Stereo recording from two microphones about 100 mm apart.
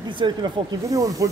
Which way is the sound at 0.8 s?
35° right (ahead or behind).